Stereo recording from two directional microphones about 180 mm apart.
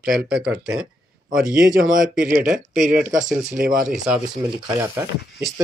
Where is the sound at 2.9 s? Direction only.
45° right (ahead or behind).